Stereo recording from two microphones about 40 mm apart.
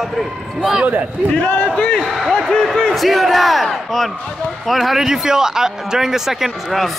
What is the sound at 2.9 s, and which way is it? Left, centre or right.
A man's voice, centre.